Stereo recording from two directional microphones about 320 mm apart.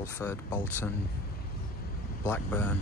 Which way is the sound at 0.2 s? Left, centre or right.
Centre.